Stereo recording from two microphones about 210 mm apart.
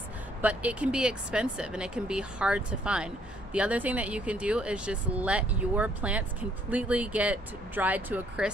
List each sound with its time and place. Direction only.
0.4 s speech: 5° right (ahead or behind)